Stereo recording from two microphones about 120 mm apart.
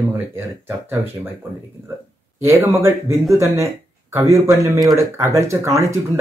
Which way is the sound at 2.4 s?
25° right (ahead or behind).